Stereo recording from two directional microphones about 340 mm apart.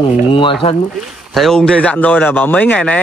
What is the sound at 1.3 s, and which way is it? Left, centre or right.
Speech, centre.